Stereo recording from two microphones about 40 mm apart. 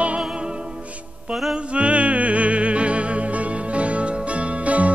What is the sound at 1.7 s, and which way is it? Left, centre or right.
Music, right.